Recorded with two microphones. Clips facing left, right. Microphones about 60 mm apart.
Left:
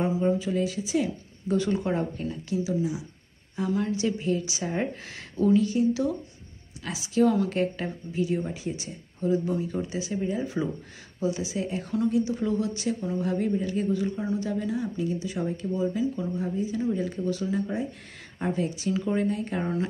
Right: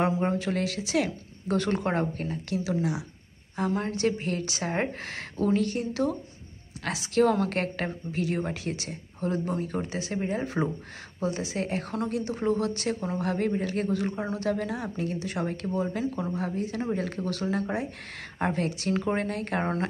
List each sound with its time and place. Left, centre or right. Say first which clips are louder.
0.0 s a woman's voice: left 1 dB; right
3.5 s a woman's voice: left 1 dB; right